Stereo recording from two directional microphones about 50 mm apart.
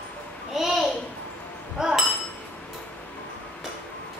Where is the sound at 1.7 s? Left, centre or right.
Centre.